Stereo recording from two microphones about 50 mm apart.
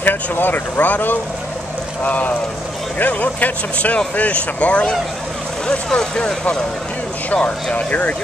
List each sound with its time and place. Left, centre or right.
0.0 s speech: left
5.7 s speech: centre
7.2 s speech: left